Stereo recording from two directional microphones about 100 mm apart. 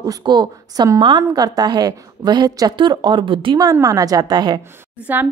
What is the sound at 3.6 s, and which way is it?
A woman's voice, 35° right (ahead or behind).